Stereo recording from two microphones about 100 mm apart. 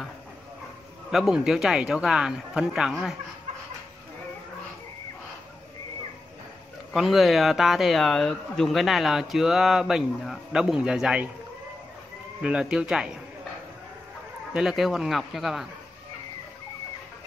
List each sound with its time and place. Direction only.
1.1 s speech: 5° right (ahead or behind)
6.9 s speech: centre (ahead or behind)
12.4 s speech: 10° right (ahead or behind)
14.5 s speech: 5° right (ahead or behind)